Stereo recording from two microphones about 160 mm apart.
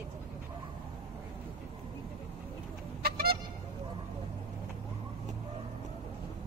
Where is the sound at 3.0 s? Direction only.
70° right (ahead or behind).